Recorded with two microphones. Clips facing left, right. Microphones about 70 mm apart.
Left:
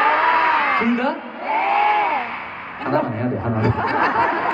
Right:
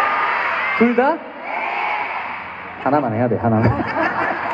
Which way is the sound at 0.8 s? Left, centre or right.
Right.